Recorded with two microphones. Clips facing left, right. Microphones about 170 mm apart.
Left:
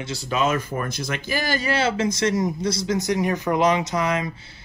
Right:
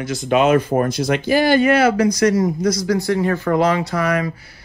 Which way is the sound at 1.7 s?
25° left (ahead or behind).